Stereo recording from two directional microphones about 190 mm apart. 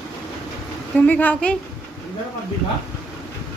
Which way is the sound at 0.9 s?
10° left (ahead or behind).